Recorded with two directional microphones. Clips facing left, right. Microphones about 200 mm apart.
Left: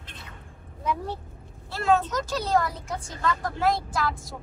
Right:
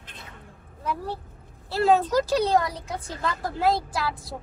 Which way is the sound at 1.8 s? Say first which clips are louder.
Right 3 dB; 35° right (ahead or behind).